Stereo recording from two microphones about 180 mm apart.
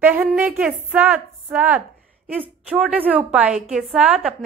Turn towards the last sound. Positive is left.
turn(degrees=-5)  # may be behind; listen again after turning